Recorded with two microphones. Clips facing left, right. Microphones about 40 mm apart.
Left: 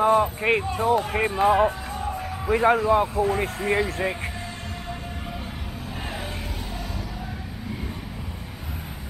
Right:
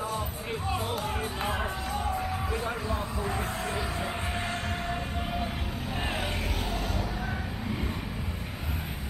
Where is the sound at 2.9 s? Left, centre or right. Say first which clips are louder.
Left 12 dB; left.